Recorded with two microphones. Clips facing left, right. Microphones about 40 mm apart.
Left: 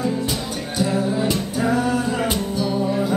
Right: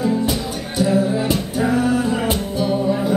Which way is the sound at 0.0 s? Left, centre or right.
Centre.